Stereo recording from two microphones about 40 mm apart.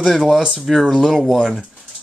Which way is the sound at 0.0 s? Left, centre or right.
Centre.